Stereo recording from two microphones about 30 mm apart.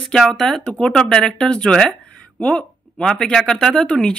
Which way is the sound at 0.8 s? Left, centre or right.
Left.